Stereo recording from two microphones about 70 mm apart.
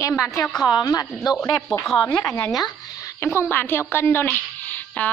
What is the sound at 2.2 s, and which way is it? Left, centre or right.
Speech, left.